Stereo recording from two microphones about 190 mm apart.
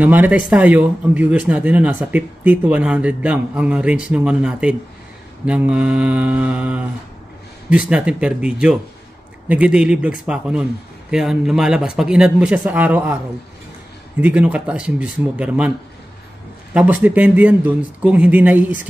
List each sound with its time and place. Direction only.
0.0 s speech: 10° right (ahead or behind)
7.9 s speech: 5° right (ahead or behind)
14.2 s speech: 5° right (ahead or behind)
16.7 s speech: 10° right (ahead or behind)